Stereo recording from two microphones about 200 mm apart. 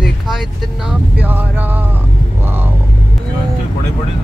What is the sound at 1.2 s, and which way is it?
Vehicle, 10° right (ahead or behind).